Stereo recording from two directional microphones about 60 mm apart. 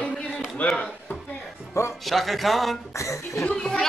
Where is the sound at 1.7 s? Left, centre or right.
Left.